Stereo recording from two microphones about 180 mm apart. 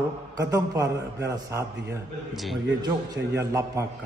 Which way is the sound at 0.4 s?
20° right (ahead or behind).